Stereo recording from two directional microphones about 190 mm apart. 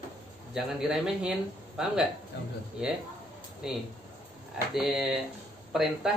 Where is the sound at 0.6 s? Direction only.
5° right (ahead or behind).